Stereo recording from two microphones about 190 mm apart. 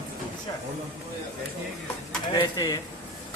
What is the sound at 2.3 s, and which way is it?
Speech, 20° left (ahead or behind).